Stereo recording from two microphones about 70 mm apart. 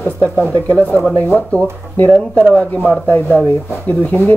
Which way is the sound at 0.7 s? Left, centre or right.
Centre.